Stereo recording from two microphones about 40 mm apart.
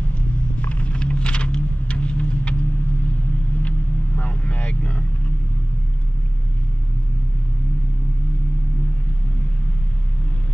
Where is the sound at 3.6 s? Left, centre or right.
Left.